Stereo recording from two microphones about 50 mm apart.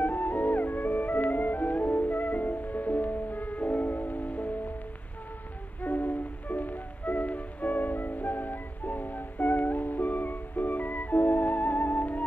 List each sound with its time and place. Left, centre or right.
0.0 s music: left
5.8 s music: left